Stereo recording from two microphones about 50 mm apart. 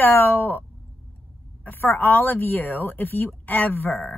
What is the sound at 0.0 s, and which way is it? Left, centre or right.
A woman's voice, left.